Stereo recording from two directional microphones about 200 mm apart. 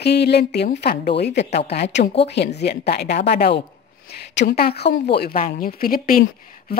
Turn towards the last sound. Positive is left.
turn(degrees=45)  # may be behind; listen again after turning